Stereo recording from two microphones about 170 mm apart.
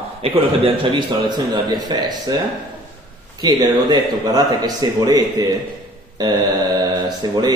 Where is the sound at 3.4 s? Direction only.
25° right (ahead or behind).